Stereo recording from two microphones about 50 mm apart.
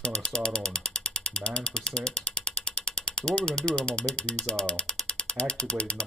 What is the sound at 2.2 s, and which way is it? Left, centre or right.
Ratchet, left.